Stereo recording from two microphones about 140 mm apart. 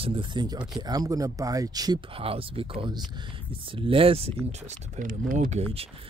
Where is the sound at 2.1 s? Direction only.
40° right (ahead or behind).